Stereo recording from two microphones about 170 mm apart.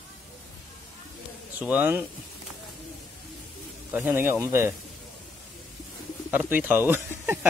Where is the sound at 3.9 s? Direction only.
10° right (ahead or behind).